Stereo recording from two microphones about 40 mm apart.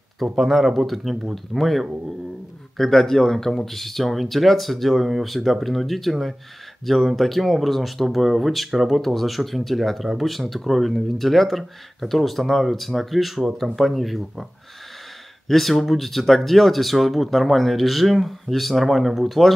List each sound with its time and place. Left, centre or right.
0.2 s speech: centre
15.4 s speech: centre